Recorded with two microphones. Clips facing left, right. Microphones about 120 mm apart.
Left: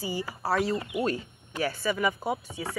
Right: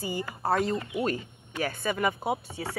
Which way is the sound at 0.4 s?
50° right (ahead or behind).